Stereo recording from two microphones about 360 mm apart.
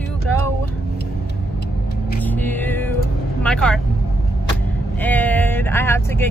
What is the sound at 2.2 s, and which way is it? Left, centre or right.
Speech, centre.